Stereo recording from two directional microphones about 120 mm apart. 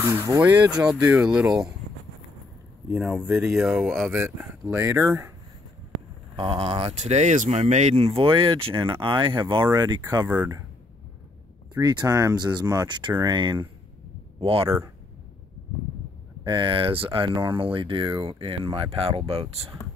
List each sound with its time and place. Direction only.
0.0 s speech: 25° right (ahead or behind)
2.9 s speech: 10° right (ahead or behind)
4.1 s speech: 15° right (ahead or behind)
6.3 s speech: 45° right (ahead or behind)
10.2 s speech: 15° right (ahead or behind)
11.7 s speech: 35° right (ahead or behind)
14.4 s speech: 50° right (ahead or behind)
16.4 s speech: 40° right (ahead or behind)